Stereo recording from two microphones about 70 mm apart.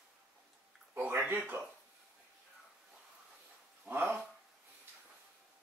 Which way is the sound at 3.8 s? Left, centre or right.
Right.